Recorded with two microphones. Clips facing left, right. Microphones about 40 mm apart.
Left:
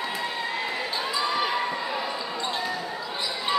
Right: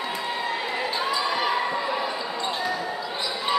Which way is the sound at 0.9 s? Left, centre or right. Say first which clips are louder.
Right 2 dB; centre.